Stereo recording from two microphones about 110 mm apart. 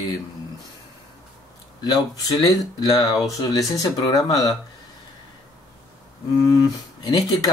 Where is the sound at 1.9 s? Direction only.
35° left (ahead or behind).